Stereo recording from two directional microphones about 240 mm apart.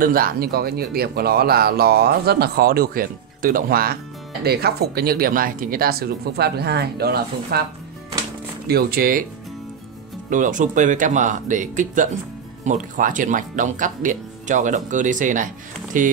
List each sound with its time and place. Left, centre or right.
0.0 s speech: right
8.6 s speech: right
10.3 s speech: right